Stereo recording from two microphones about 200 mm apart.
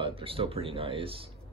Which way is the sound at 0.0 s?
25° right (ahead or behind).